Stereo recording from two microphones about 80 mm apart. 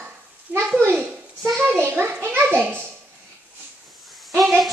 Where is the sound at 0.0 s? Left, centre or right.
Right.